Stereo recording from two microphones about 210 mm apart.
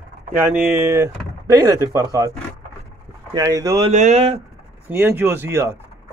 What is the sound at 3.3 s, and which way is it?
Speech, 15° right (ahead or behind).